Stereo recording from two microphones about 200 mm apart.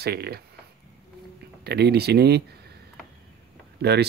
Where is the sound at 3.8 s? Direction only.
55° right (ahead or behind).